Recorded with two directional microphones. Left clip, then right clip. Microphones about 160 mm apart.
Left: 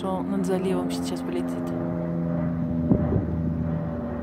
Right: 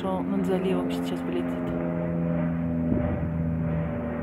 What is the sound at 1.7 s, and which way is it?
Vehicle, 30° right (ahead or behind).